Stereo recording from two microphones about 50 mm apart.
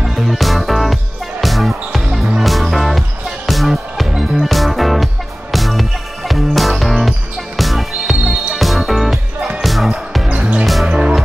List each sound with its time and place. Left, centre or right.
0.0 s music: centre
10.2 s music: right
10.6 s music: centre
10.9 s music: centre